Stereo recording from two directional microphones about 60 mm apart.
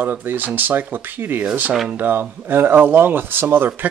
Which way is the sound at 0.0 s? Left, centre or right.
Right.